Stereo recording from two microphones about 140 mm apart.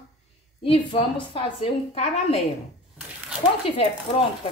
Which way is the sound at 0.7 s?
40° left (ahead or behind).